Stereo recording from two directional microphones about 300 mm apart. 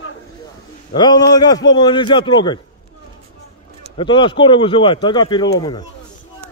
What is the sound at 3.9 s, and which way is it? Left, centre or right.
Speech, centre.